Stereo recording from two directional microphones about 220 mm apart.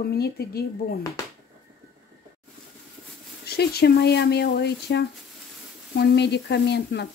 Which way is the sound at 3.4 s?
45° left (ahead or behind).